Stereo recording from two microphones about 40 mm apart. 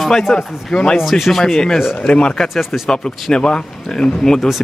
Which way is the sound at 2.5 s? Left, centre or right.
Centre.